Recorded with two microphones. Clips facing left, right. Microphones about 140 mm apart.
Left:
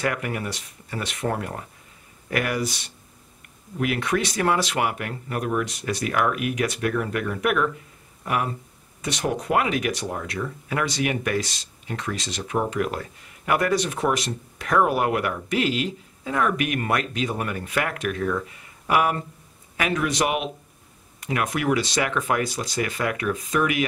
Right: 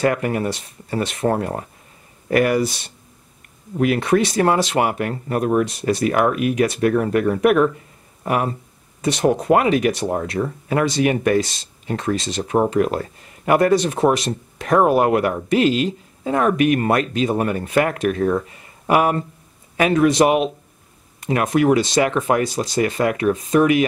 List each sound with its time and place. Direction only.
0.0 s speech: 35° right (ahead or behind)
3.8 s speech: 35° right (ahead or behind)
9.0 s speech: 30° right (ahead or behind)